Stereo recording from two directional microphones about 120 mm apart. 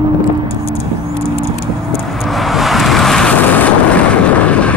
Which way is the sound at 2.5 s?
Centre (ahead or behind).